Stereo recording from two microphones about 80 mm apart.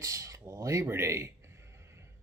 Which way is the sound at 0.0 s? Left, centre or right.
Right.